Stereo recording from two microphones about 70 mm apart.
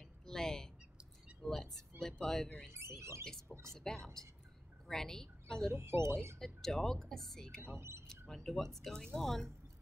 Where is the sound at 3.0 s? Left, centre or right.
Right.